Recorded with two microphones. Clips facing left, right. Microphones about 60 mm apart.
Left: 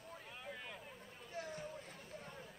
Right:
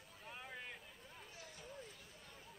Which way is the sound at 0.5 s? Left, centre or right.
Centre.